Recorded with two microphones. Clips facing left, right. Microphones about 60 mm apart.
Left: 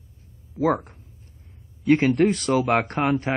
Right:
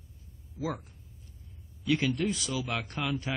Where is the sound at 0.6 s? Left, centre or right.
Left.